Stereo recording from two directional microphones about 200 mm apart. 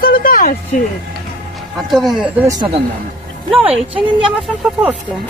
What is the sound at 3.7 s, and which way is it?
Speech, 25° right (ahead or behind).